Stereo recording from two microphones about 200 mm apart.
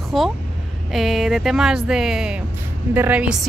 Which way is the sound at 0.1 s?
Centre (ahead or behind).